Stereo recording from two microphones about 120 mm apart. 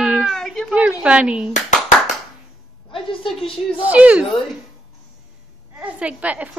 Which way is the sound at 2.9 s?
45° left (ahead or behind).